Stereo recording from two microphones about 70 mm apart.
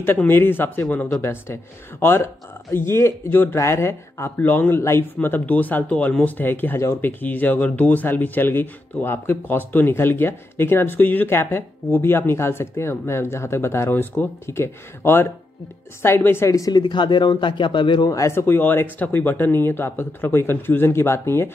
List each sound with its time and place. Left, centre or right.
0.2 s speech: left
3.5 s speech: left
4.4 s speech: left
16.4 s speech: left
16.7 s speech: left
18.1 s speech: left
18.4 s speech: left